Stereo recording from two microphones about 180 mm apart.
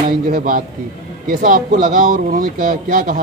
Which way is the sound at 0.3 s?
50° right (ahead or behind).